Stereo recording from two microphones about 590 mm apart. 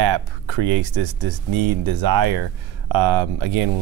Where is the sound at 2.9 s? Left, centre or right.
Right.